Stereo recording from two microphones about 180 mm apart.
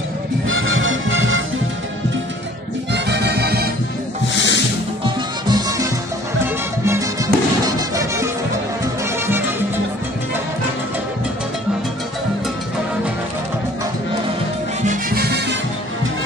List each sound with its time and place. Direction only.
0.5 s music: 90° right
2.9 s music: 70° right (ahead or behind)
4.3 s music: 90° left
5.0 s music: 20° right (ahead or behind)
14.9 s music: 55° right (ahead or behind)